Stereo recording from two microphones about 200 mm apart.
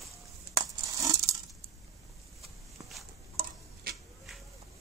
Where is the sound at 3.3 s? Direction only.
45° right (ahead or behind).